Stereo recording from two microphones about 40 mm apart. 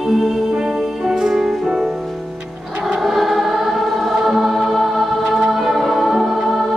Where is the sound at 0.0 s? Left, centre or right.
Centre.